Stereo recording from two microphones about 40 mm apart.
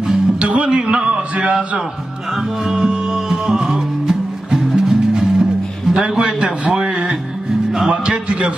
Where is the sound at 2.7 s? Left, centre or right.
Centre.